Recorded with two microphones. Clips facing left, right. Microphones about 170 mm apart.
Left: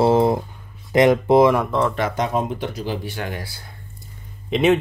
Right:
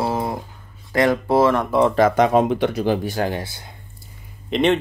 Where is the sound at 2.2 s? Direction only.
80° right; by 3.4 s 40° right (ahead or behind).